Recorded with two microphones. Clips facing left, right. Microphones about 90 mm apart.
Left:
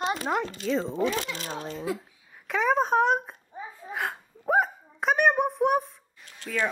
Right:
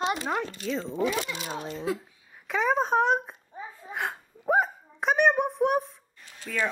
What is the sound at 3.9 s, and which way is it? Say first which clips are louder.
Hiccup: left 1 dB; centre (ahead or behind).